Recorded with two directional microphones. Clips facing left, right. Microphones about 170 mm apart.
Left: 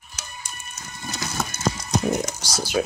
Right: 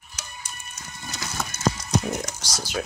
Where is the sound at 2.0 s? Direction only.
25° left (ahead or behind).